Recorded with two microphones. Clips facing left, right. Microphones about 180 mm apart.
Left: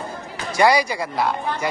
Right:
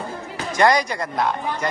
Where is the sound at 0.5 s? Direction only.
10° left (ahead or behind).